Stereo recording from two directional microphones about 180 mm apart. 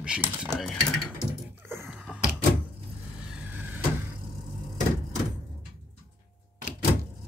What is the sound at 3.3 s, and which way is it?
Vehicle, 10° right (ahead or behind).